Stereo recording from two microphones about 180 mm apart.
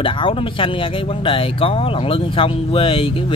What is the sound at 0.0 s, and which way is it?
Speech, 30° left (ahead or behind).